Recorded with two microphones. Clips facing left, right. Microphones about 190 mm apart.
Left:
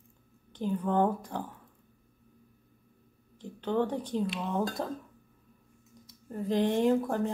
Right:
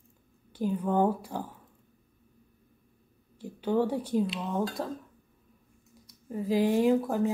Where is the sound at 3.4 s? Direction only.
10° right (ahead or behind).